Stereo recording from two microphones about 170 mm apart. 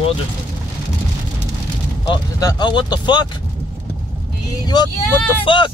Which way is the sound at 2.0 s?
25° left (ahead or behind).